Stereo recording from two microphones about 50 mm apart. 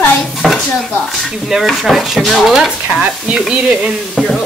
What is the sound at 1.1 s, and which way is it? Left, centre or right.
Stir, centre.